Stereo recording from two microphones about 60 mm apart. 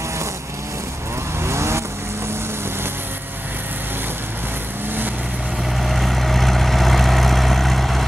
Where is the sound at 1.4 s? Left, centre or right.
Right.